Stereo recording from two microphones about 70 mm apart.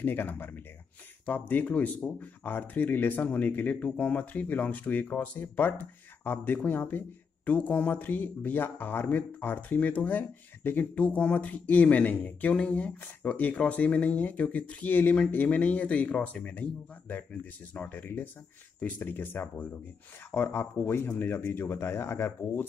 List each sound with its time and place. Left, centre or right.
0.0 s speech: left